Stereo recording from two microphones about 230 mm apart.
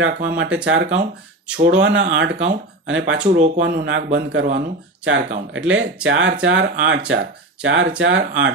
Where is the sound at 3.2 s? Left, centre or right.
Right.